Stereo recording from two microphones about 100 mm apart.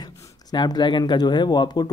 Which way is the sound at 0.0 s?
45° left (ahead or behind).